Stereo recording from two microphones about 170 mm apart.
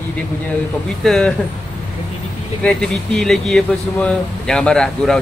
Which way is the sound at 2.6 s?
5° left (ahead or behind).